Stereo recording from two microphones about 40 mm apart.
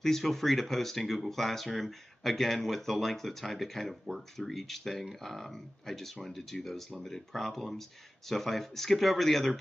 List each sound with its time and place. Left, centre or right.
0.0 s speech: centre
6.9 s speech: centre